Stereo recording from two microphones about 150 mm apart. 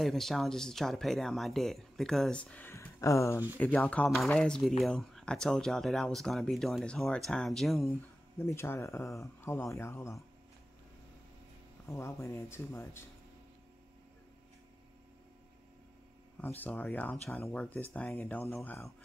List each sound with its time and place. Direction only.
0.0 s speech: centre (ahead or behind); by 3.4 s 20° left (ahead or behind)
3.5 s speech: 10° left (ahead or behind)
8.4 s speech: 15° left (ahead or behind)
11.9 s speech: 15° left (ahead or behind)
16.3 s speech: 10° left (ahead or behind)